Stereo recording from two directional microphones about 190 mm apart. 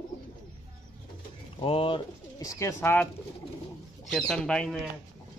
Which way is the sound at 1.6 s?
30° left (ahead or behind).